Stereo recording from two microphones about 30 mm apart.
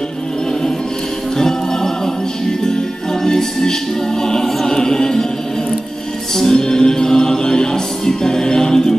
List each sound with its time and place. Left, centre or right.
1.4 s music: centre
3.3 s music: centre
6.3 s music: centre